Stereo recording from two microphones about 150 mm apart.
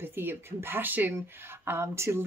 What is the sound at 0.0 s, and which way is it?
Speech, 15° right (ahead or behind).